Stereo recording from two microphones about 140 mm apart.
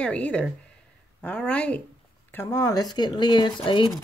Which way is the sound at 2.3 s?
20° left (ahead or behind).